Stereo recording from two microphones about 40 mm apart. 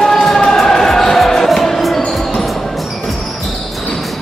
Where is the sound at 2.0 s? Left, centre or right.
Centre.